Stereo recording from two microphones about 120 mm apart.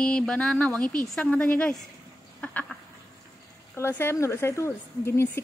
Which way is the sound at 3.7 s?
20° left (ahead or behind).